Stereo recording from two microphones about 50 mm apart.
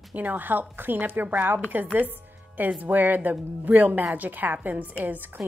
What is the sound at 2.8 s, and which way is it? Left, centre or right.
Speech, right.